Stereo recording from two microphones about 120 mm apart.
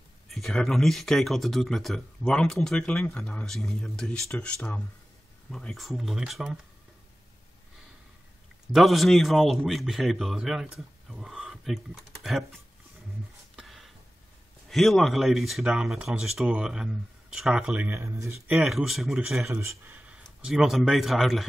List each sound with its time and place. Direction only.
0.3 s speech: 5° left (ahead or behind)
8.7 s speech: centre (ahead or behind)
13.6 s a sound: centre (ahead or behind)
14.7 s speech: centre (ahead or behind); by 18.4 s 20° right (ahead or behind)
18.5 s speech: 5° right (ahead or behind)
19.5 s speech: 25° right (ahead or behind)
20.4 s speech: 5° right (ahead or behind)